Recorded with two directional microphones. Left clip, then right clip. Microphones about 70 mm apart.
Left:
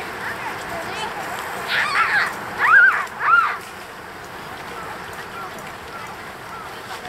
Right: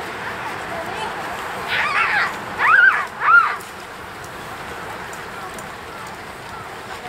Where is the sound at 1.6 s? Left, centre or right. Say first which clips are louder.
Even; left.